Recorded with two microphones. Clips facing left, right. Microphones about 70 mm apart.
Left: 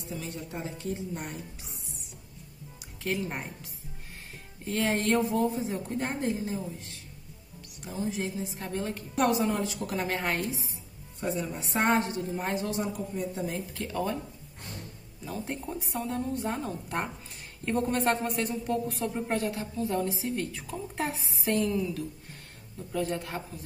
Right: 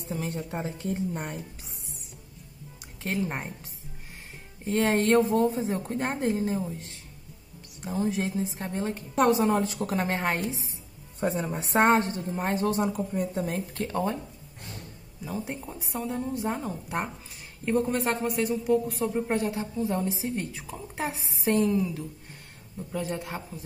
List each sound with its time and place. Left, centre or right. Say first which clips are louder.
0.1 s a woman's voice: right 5 dB; right
3.0 s a woman's voice: right 2 dB; right
4.8 s a woman's voice: right 4 dB; right
7.8 s a woman's voice: right 4 dB; right
11.1 s a woman's voice: right 3 dB; right
15.2 s a woman's voice: right 1 dB; centre
19.2 s a woman's voice: right 2 dB; right
22.9 s a man's voice: left 1 dB; centre